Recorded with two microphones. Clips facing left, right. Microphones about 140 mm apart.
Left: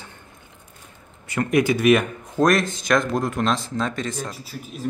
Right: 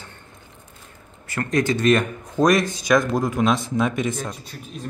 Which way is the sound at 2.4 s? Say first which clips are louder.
Right 1 dB; 15° right (ahead or behind).